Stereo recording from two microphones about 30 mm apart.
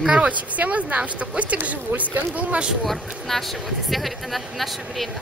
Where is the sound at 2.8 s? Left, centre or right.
Centre.